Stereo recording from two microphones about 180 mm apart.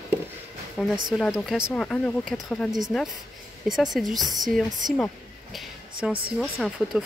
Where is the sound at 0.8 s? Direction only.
Centre (ahead or behind).